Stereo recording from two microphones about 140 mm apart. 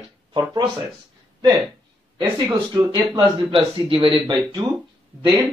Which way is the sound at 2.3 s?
30° right (ahead or behind).